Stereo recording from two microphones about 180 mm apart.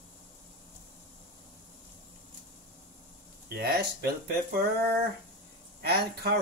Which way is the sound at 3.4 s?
60° right (ahead or behind).